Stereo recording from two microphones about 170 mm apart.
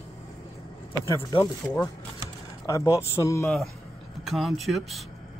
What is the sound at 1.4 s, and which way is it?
A man's voice, 15° left (ahead or behind).